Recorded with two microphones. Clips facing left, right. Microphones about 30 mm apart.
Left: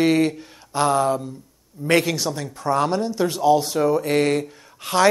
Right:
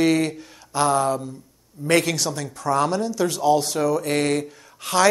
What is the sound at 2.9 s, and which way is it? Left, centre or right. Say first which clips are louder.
Speech: left 1 dB; left.